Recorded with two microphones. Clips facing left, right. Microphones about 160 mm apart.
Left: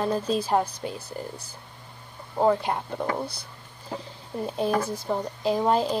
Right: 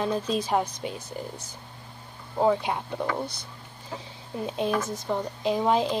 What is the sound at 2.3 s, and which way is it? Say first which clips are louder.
Speech: left 1 dB; centre (ahead or behind).